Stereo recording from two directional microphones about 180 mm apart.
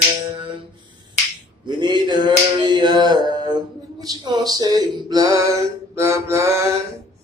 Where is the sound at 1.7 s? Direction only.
25° right (ahead or behind).